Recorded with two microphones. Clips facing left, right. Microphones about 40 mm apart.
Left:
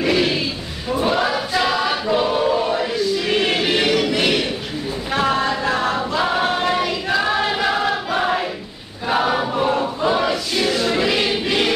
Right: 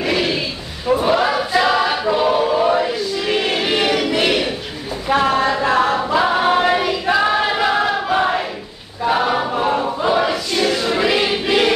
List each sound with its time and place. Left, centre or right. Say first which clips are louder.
0.0 s a sound: left 1 dB; centre
1.0 s choir: even; centre
5.1 s a capella: right 4 dB; centre
9.0 s choir: right 2 dB; centre